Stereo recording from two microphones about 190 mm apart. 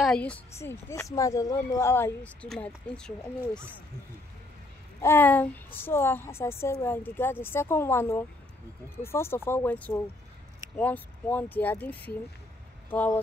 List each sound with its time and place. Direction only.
0.0 s a sound: 5° left (ahead or behind)
0.6 s a woman's voice: 15° left (ahead or behind)
5.0 s a woman's voice: 10° left (ahead or behind)